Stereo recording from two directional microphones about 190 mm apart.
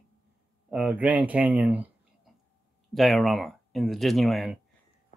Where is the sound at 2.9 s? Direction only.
Centre (ahead or behind).